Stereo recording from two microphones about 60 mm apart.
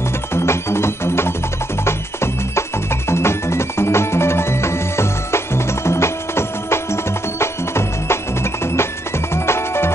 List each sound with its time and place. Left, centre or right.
0.3 s music: left